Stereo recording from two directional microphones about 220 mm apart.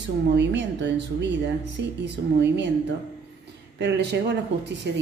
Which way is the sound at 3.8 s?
50° right (ahead or behind).